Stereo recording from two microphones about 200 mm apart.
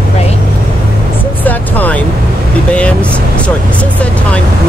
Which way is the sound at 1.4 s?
10° left (ahead or behind).